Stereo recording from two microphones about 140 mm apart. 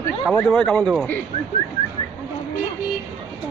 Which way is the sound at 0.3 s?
5° left (ahead or behind).